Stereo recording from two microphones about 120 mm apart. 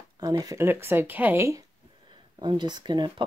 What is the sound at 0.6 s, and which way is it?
Speech, 20° right (ahead or behind).